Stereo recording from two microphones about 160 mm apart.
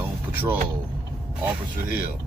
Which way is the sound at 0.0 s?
10° right (ahead or behind).